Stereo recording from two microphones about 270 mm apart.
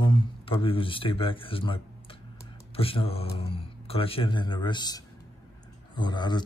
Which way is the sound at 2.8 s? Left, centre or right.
Left.